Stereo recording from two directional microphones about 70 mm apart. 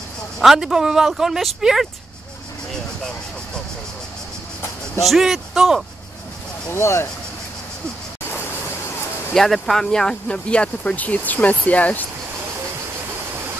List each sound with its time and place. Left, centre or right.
0.4 s speech: centre
5.0 s a man's voice: centre
6.7 s speech: left
8.3 s vehicle: left
9.3 s speech: centre; by 12.1 s left